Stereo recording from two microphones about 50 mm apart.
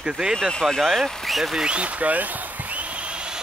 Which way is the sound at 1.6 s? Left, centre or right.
Right.